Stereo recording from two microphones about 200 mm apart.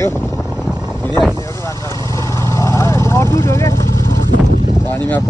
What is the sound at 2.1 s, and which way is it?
Vehicle, 15° left (ahead or behind).